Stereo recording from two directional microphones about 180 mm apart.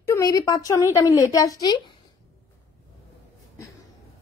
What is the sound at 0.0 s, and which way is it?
A woman's voice, 15° left (ahead or behind).